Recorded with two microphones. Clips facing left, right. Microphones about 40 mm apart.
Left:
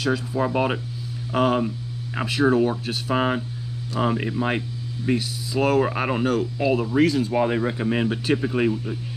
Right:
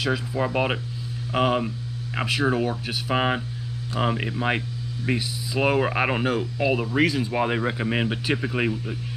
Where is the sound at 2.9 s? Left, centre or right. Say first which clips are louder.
Left 1 dB; centre.